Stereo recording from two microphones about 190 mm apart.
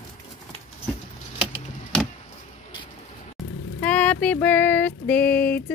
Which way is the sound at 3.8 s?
10° left (ahead or behind).